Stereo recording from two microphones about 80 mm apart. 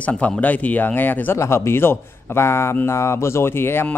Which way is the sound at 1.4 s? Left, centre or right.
Left.